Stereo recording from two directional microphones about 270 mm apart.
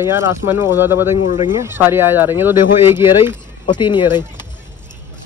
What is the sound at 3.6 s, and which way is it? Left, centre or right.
Speech, centre.